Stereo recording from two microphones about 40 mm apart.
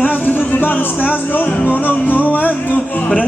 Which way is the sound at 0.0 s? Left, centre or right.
Left.